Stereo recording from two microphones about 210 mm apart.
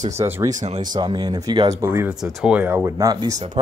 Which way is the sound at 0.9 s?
20° right (ahead or behind).